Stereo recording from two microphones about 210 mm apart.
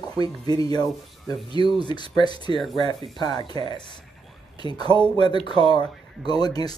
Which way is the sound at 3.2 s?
20° left (ahead or behind).